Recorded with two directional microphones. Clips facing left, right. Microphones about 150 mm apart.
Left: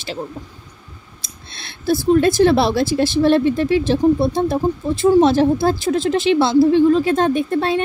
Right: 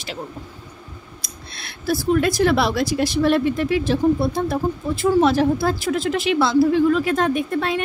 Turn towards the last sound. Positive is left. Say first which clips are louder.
# left 4 dB
turn(degrees=30)  # may be behind; listen again after turning